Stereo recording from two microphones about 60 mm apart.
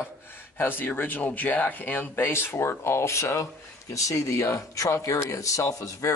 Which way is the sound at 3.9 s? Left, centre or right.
Left.